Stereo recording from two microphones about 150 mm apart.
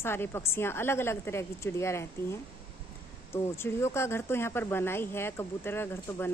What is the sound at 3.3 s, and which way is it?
Speech, 15° left (ahead or behind).